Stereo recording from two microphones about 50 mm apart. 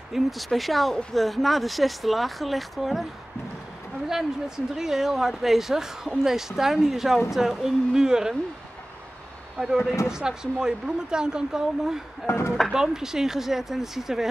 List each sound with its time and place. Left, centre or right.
0.1 s speech: centre
4.7 s speech: centre
9.6 s speech: centre
12.3 s speech: left
12.7 s speech: centre